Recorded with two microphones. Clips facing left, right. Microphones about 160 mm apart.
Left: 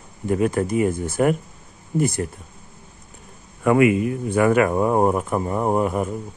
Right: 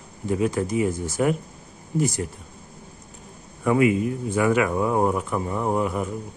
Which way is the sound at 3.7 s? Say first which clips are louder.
Left 3 dB; 70° left (ahead or behind).